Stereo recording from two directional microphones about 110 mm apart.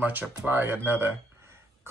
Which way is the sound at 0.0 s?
15° right (ahead or behind).